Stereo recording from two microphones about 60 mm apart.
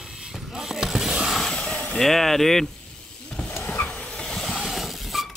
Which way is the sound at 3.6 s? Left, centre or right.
Left.